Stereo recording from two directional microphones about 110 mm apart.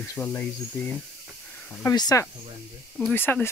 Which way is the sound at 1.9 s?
35° left (ahead or behind).